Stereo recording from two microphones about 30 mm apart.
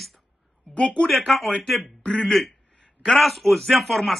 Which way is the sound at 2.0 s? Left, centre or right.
Left.